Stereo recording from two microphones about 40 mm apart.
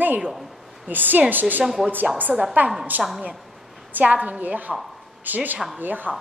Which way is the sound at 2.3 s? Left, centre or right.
Centre.